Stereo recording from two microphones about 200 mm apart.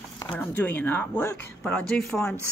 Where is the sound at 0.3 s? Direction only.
5° left (ahead or behind).